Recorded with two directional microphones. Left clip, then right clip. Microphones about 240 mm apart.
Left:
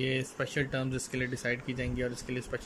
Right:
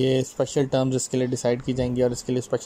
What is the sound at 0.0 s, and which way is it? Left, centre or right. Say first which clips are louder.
Speech: right 10 dB; right.